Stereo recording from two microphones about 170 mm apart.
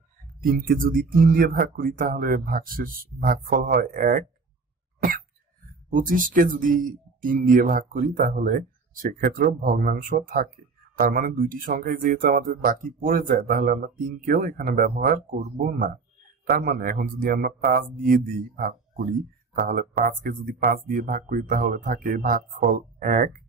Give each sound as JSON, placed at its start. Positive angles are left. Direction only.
{"t": 0.4, "sound": "speech", "side_deg": -55}
{"t": 5.9, "sound": "speech", "side_deg": -50}